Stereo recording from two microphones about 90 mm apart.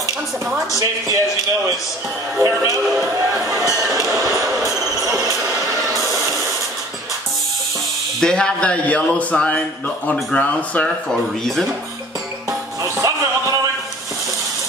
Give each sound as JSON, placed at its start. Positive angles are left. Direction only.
{"t": 0.7, "sound": "a man's voice", "side_deg": -40}
{"t": 2.3, "sound": "a man's voice", "side_deg": -35}
{"t": 3.9, "sound": "a sound", "side_deg": -40}
{"t": 8.2, "sound": "speech", "side_deg": 10}
{"t": 12.8, "sound": "music", "side_deg": -40}